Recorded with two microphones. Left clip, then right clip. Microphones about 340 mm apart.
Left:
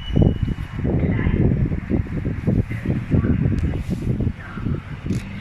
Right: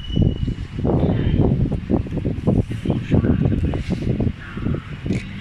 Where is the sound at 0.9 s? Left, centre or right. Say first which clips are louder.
Right 4 dB; right.